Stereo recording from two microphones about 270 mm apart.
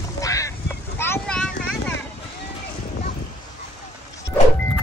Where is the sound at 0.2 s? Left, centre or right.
Centre.